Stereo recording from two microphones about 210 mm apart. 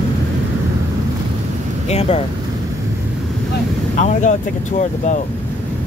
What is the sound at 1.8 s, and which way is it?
Speech, 30° left (ahead or behind).